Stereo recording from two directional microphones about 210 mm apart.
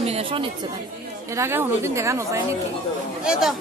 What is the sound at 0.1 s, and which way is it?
Chatter, 25° right (ahead or behind).